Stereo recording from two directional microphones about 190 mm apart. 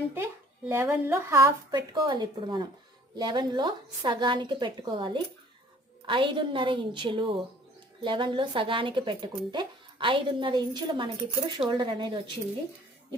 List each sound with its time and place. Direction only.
0.7 s speech: 10° right (ahead or behind)